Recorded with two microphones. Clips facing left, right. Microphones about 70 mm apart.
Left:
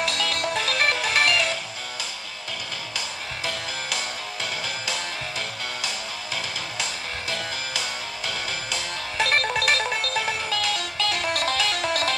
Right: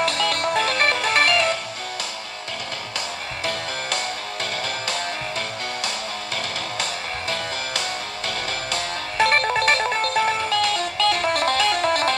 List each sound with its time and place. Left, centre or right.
0.0 s music: right
3.4 s music: right
9.3 s music: right